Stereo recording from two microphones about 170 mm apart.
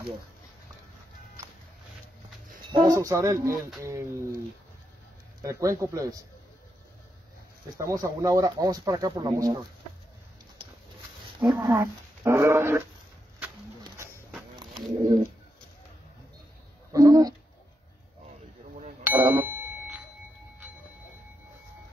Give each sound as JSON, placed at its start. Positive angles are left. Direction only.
{"t": 2.7, "sound": "speech", "side_deg": -20}
{"t": 5.4, "sound": "speech", "side_deg": -20}
{"t": 7.7, "sound": "speech", "side_deg": -20}
{"t": 11.3, "sound": "speech", "side_deg": -25}
{"t": 16.9, "sound": "a sound", "side_deg": -20}
{"t": 19.0, "sound": "bicycle bell", "side_deg": -15}
{"t": 19.4, "sound": "a sound", "side_deg": -10}